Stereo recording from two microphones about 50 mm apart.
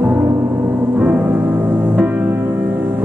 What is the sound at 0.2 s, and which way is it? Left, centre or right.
Gong, right.